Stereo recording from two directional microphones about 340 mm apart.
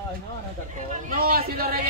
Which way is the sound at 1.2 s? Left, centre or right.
Right.